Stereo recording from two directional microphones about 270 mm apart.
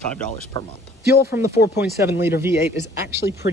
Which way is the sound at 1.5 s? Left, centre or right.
Left.